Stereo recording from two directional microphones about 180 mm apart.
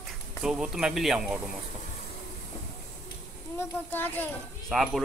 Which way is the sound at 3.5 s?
10° left (ahead or behind).